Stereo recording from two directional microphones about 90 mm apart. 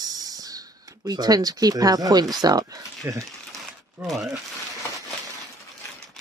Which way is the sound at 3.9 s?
Centre (ahead or behind).